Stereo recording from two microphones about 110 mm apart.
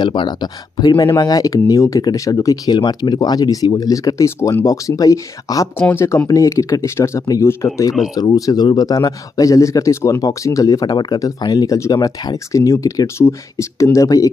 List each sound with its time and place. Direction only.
0.0 s speech: 45° left (ahead or behind)
5.8 s speech: 15° left (ahead or behind)
6.0 s speech: 30° left (ahead or behind)